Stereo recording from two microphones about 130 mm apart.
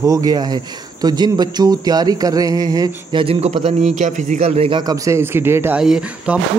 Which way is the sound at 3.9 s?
70° right (ahead or behind).